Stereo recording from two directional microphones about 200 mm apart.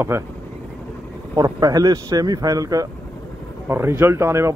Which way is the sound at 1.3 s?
20° right (ahead or behind).